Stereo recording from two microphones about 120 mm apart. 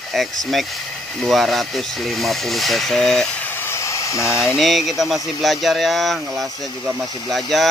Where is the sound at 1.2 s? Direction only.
Centre (ahead or behind).